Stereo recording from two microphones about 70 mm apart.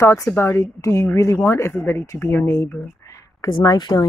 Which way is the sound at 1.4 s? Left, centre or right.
Left.